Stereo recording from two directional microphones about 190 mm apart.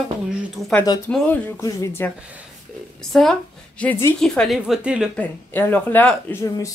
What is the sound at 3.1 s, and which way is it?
Speech, 5° left (ahead or behind).